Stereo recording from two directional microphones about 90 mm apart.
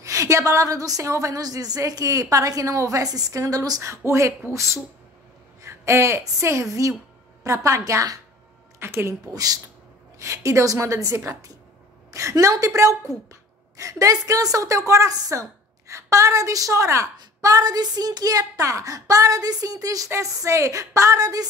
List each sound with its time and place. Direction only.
0.0 s a woman's voice: 35° right (ahead or behind)
3.8 s a woman's voice: 30° right (ahead or behind)
8.7 s a woman's voice: 30° right (ahead or behind)
9.2 s a woman's voice: 45° right (ahead or behind)